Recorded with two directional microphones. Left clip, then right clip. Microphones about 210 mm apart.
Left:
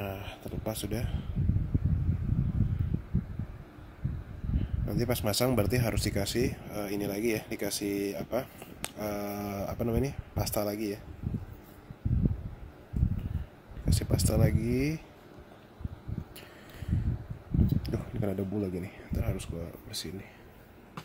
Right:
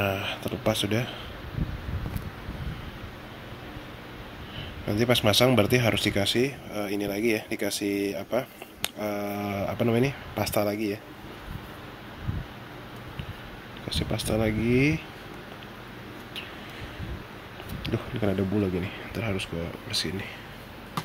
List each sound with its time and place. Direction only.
0.0 s speech: 10° left (ahead or behind)
4.8 s speech: 20° left (ahead or behind)
13.8 s speech: 35° left (ahead or behind)
17.8 s speech: 20° left (ahead or behind)